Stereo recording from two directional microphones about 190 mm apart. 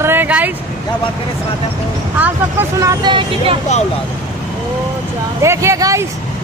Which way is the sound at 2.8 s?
20° right (ahead or behind).